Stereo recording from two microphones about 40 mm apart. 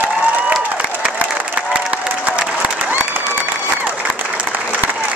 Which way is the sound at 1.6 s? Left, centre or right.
Right.